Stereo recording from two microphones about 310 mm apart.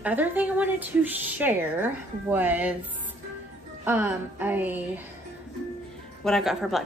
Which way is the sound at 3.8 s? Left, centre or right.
Centre.